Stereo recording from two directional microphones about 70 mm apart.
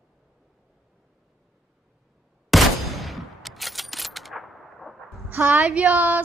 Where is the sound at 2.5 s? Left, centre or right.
Centre.